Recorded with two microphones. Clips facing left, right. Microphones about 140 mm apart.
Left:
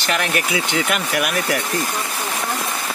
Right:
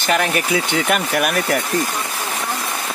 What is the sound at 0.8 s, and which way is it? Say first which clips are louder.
Speech: right 3 dB; 45° right (ahead or behind).